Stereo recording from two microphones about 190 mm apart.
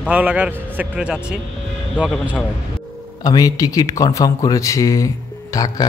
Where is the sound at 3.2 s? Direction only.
20° left (ahead or behind).